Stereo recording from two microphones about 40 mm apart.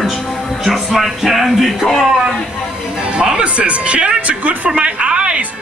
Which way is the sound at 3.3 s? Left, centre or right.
Right.